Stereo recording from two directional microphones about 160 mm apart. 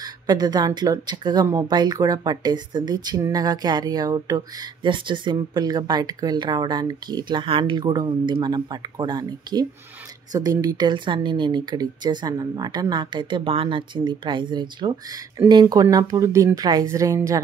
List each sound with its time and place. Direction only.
0.0 s speech: 25° right (ahead or behind)